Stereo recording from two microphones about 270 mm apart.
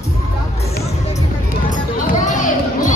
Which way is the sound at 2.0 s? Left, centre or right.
Left.